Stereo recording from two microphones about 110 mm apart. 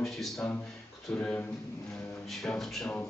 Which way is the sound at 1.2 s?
15° left (ahead or behind).